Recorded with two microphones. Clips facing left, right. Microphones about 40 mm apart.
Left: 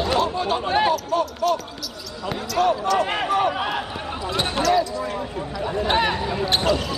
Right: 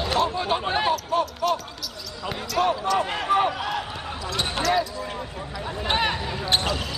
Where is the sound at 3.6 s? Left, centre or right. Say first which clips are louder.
Left 3 dB; left.